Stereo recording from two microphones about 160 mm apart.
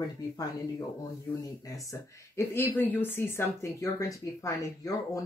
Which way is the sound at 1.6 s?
20° left (ahead or behind).